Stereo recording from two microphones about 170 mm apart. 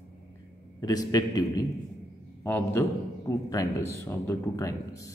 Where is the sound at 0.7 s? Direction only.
20° left (ahead or behind).